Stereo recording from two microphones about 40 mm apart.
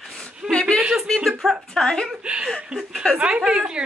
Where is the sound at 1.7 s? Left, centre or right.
Centre.